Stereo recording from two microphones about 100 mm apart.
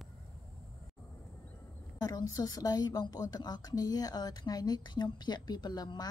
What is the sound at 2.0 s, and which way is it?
A woman's voice, 40° left (ahead or behind).